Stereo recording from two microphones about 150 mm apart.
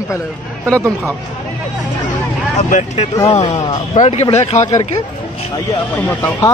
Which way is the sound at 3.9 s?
45° left (ahead or behind).